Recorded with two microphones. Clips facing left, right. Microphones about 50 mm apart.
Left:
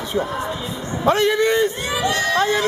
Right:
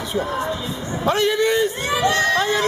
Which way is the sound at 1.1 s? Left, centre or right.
Left.